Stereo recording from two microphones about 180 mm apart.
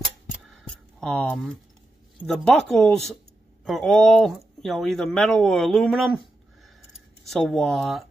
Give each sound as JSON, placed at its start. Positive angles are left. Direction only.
{"t": 0.5, "sound": "a sound", "side_deg": 0}
{"t": 2.2, "sound": "speech", "side_deg": 5}
{"t": 7.2, "sound": "speech", "side_deg": 0}